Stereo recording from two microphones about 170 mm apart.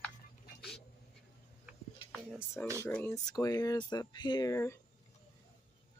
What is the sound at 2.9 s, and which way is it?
Speech, 15° left (ahead or behind).